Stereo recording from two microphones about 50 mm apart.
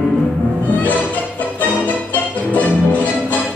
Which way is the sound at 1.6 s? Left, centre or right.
Left.